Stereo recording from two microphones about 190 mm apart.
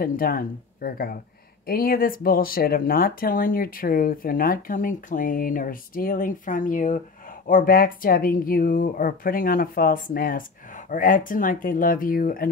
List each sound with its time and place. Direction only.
0.0 s speech: 50° left (ahead or behind)